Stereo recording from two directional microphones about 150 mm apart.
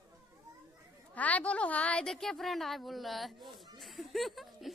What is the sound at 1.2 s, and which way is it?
A woman's voice, 10° left (ahead or behind).